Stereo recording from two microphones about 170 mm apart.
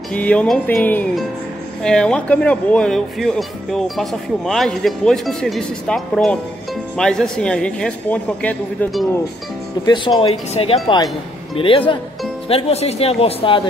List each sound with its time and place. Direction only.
0.1 s music: 5° left (ahead or behind)
1.8 s speech: 5° left (ahead or behind)
9.8 s speech: 25° left (ahead or behind)